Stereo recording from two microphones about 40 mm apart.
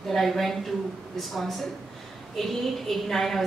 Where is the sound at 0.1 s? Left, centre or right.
Centre.